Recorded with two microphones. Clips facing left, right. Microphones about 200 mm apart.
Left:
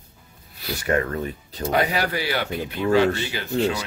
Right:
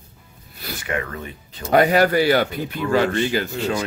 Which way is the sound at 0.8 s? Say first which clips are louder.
Left 5 dB; 40° left (ahead or behind).